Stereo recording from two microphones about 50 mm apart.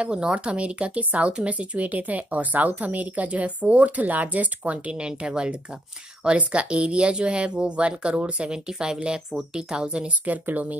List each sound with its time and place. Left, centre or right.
0.0 s speech: centre